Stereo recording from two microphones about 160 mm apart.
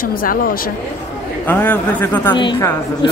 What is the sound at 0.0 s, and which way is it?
Speech, 60° left (ahead or behind).